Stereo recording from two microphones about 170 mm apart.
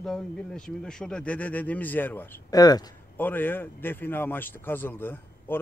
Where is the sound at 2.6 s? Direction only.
20° left (ahead or behind).